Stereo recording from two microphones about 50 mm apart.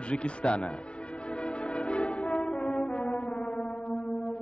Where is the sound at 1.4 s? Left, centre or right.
Left.